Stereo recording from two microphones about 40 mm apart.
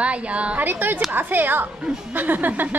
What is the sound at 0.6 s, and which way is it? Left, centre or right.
A woman's voice, right.